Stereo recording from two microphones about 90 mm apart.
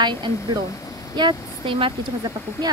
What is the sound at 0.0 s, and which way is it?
Speech, 60° right (ahead or behind).